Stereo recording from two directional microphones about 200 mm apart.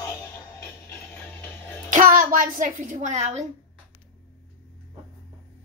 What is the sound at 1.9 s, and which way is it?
A child's voice, 40° right (ahead or behind).